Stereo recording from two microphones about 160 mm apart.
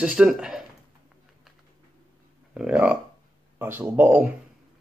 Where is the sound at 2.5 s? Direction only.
5° right (ahead or behind).